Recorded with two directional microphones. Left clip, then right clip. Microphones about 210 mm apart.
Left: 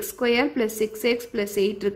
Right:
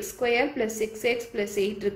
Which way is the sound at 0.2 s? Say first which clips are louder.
Left 2 dB; 50° left (ahead or behind).